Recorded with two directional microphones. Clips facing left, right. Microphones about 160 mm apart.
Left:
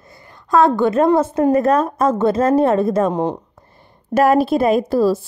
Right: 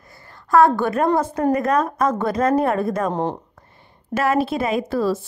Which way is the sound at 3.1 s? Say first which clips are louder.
Left 3 dB; 15° left (ahead or behind).